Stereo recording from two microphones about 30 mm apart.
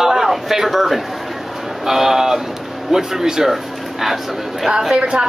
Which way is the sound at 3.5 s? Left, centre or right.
Centre.